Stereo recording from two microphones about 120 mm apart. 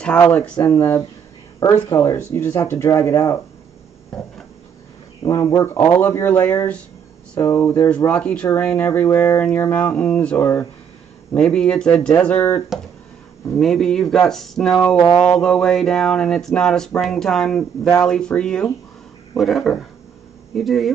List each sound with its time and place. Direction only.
0.2 s speech: 20° left (ahead or behind)
5.2 s speech: 30° left (ahead or behind)
8.1 s speech: 10° left (ahead or behind)
11.3 s speech: 5° left (ahead or behind)
13.6 s speech: 5° left (ahead or behind)